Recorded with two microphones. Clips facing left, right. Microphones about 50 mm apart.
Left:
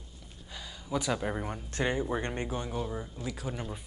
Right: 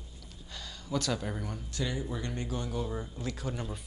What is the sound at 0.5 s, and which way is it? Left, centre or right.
Speech, centre.